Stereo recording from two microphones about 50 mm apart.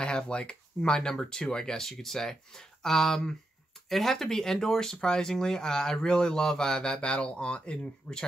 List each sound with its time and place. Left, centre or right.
0.0 s speech: centre